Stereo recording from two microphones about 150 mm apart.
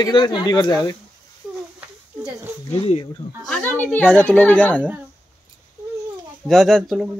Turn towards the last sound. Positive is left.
turn(degrees=0)  # may be behind; listen again after turning